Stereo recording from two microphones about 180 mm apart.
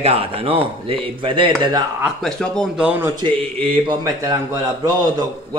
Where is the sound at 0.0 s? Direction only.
35° right (ahead or behind).